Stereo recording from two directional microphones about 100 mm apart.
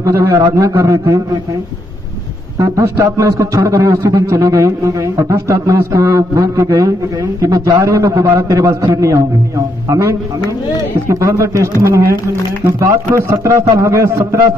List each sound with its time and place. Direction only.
0.0 s a man's voice: 30° right (ahead or behind)
2.6 s a man's voice: 30° right (ahead or behind)
12.7 s a man's voice: 30° right (ahead or behind)